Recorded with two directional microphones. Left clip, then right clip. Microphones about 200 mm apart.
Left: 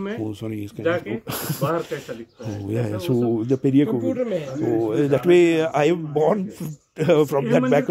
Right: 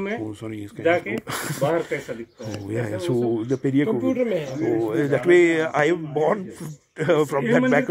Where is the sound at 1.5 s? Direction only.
50° left (ahead or behind).